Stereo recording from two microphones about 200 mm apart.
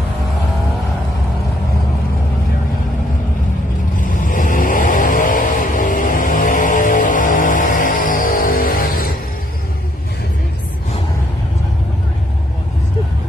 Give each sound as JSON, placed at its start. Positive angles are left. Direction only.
{"t": 4.0, "sound": "vehicle", "side_deg": 40}